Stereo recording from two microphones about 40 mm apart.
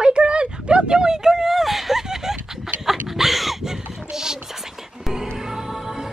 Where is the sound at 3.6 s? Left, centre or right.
Centre.